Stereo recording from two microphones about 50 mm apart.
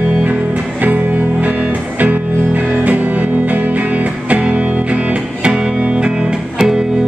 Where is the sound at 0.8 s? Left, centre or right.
Right.